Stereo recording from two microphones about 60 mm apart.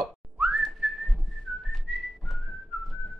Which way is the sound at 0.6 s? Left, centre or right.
Centre.